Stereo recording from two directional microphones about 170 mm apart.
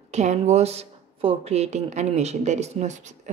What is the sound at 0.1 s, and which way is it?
Speech, 40° right (ahead or behind).